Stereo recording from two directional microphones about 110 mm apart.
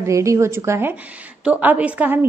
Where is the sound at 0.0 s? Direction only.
25° right (ahead or behind).